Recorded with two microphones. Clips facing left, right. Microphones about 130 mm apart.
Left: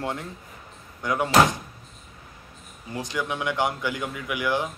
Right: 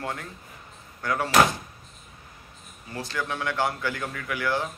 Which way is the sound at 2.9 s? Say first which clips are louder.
Left 2 dB; 15° left (ahead or behind).